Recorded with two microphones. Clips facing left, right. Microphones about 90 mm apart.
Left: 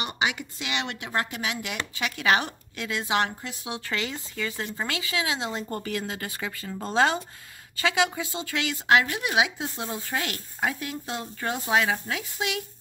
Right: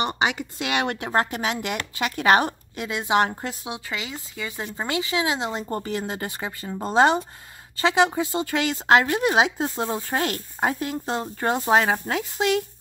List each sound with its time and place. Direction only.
0.0 s speech: 35° right (ahead or behind)
0.6 s speech: 50° right (ahead or behind)
2.7 s speech: 25° right (ahead or behind)
3.8 s speech: 5° right (ahead or behind)
4.4 s speech: 15° right (ahead or behind)
8.3 s speech: 40° right (ahead or behind)